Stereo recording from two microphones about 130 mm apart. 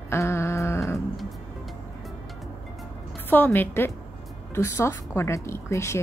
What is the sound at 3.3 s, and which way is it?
A woman's voice, 15° left (ahead or behind).